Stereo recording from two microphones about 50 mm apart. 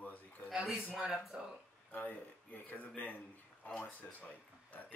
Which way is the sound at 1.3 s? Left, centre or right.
Right.